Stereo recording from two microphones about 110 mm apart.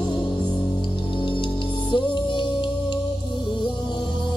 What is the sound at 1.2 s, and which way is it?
Music, 45° left (ahead or behind).